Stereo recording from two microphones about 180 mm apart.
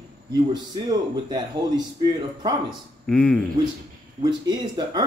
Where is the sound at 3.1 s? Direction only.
5° left (ahead or behind).